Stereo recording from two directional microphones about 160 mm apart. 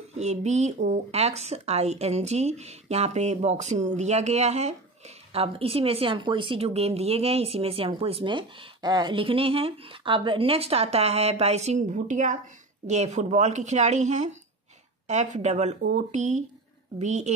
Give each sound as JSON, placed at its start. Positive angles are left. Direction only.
{"t": 0.2, "sound": "a woman's voice", "side_deg": -45}